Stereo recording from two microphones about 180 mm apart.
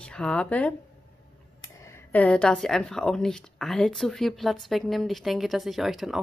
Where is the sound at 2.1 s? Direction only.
5° left (ahead or behind).